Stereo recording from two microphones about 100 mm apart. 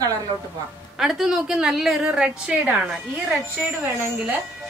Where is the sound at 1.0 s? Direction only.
5° right (ahead or behind).